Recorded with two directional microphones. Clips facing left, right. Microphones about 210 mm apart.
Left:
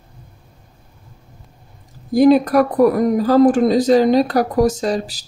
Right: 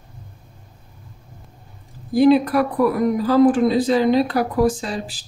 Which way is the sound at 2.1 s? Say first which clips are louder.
Left 3 dB; 45° left (ahead or behind).